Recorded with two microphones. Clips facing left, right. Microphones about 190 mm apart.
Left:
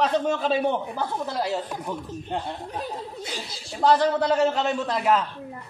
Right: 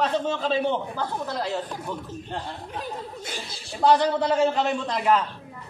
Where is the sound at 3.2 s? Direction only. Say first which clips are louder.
Left 1 dB; 50° right (ahead or behind).